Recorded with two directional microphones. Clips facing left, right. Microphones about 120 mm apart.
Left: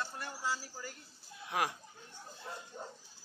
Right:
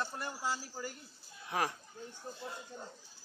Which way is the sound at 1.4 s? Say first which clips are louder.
Even; 5° left (ahead or behind).